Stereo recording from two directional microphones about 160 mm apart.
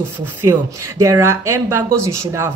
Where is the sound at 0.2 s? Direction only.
15° right (ahead or behind).